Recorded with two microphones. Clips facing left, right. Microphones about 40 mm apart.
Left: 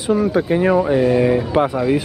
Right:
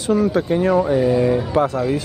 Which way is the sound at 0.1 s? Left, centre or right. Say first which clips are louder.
Left 1 dB; centre.